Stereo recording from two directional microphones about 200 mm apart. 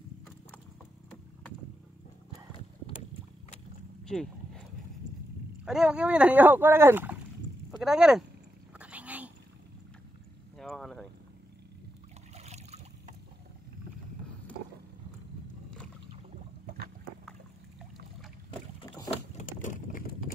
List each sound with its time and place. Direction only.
4.0 s a sound: 5° left (ahead or behind)
5.7 s speech: 5° right (ahead or behind)
8.7 s cat: 5° right (ahead or behind)
10.6 s boat: centre (ahead or behind)
12.4 s boat: 35° right (ahead or behind)
19.3 s vehicle: 40° left (ahead or behind)